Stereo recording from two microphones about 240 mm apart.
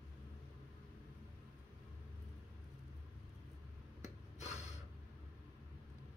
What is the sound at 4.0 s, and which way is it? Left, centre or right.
Rub, left.